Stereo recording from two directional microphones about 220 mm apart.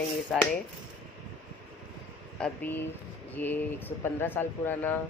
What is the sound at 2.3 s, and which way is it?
Speech, 5° left (ahead or behind).